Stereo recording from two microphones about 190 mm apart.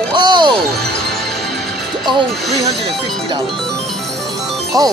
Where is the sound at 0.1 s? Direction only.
25° right (ahead or behind).